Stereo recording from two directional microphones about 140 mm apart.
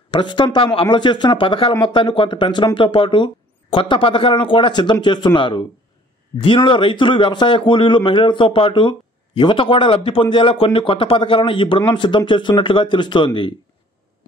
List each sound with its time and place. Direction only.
0.1 s speech: 35° left (ahead or behind)